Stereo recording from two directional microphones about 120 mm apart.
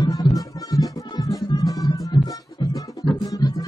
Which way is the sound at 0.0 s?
30° left (ahead or behind).